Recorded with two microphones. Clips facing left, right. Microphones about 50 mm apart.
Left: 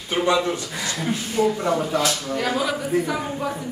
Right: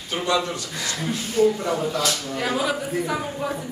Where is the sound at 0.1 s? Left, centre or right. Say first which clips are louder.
Left 3 dB; left.